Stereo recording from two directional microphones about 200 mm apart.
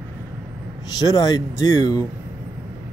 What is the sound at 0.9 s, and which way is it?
Speech, 20° left (ahead or behind).